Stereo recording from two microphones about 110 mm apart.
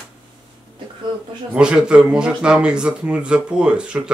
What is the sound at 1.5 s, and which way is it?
Speech, 10° right (ahead or behind).